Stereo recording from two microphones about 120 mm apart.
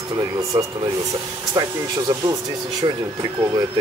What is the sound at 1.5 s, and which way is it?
Speech, 35° right (ahead or behind).